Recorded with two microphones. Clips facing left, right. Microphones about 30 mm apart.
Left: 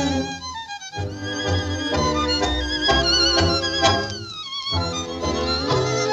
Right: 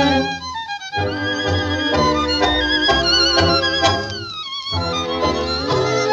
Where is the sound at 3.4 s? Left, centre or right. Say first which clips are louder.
Right 5 dB; right.